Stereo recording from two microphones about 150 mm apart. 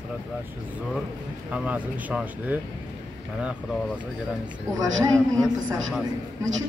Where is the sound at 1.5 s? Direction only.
10° right (ahead or behind).